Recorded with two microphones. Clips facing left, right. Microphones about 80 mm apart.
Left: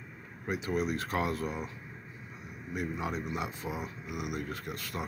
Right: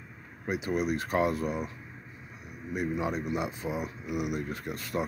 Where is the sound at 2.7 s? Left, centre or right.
Centre.